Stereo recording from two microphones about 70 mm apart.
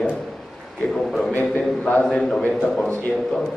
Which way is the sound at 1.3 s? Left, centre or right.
Left.